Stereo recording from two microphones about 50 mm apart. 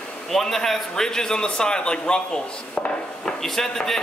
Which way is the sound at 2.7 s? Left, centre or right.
Centre.